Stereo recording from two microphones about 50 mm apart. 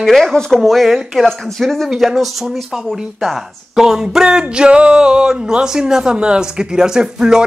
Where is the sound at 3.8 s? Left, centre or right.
Centre.